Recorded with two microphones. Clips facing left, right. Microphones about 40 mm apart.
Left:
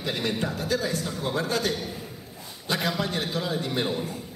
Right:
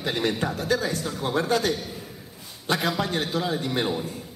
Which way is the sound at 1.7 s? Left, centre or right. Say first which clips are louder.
Left 1 dB; centre.